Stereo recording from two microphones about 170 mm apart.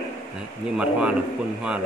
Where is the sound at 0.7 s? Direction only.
5° right (ahead or behind).